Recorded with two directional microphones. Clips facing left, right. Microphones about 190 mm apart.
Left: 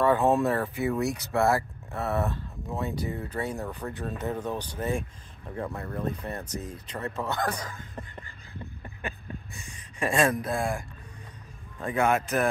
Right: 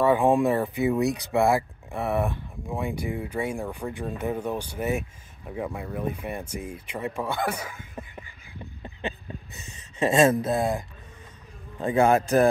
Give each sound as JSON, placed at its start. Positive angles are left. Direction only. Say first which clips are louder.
{"t": 0.0, "sound": "speech", "louder": "right 2 dB", "side_deg": -10}
{"t": 8.8, "sound": "a sound", "louder": "right 6 dB", "side_deg": -20}
{"t": 11.8, "sound": "speech", "louder": "right 5 dB", "side_deg": -30}